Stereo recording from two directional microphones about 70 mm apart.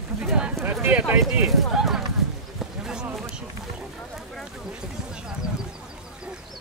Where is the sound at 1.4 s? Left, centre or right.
Centre.